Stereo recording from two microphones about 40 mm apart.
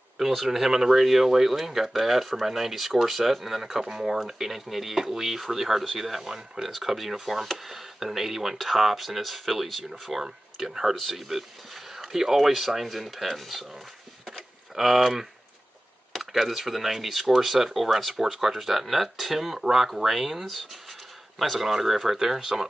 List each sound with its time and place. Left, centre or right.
0.3 s speech: centre
14.2 s a sound: centre
16.1 s speech: centre
21.5 s speech: centre